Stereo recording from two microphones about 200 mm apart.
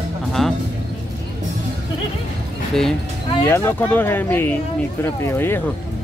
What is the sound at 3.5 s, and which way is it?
Speech, 10° left (ahead or behind).